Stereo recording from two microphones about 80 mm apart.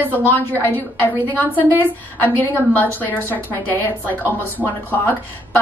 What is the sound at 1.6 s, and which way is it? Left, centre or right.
Speech, right.